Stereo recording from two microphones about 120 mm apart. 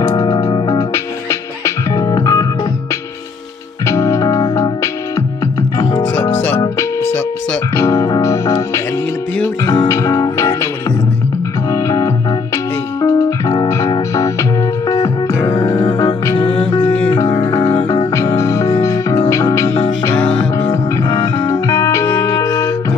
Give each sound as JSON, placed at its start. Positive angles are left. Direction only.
{"t": 0.1, "sound": "music", "side_deg": 35}
{"t": 0.9, "sound": "music", "side_deg": 25}
{"t": 3.8, "sound": "music", "side_deg": 25}
{"t": 6.1, "sound": "music", "side_deg": 15}
{"t": 9.8, "sound": "music", "side_deg": 30}
{"t": 11.7, "sound": "music", "side_deg": 25}
{"t": 15.5, "sound": "music", "side_deg": 35}
{"t": 16.8, "sound": "music", "side_deg": 15}
{"t": 17.4, "sound": "organ", "side_deg": 35}
{"t": 18.1, "sound": "music", "side_deg": 25}
{"t": 20.2, "sound": "music", "side_deg": 10}
{"t": 21.1, "sound": "music", "side_deg": 40}